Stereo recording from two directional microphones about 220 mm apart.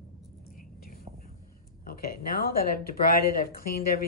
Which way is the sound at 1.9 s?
40° left (ahead or behind).